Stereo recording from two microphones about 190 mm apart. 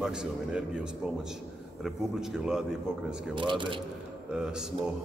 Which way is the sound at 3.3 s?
25° right (ahead or behind).